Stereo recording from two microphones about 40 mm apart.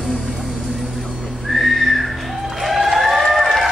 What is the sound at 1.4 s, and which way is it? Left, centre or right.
Whistling, centre.